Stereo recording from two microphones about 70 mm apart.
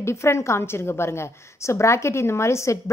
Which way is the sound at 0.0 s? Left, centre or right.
Left.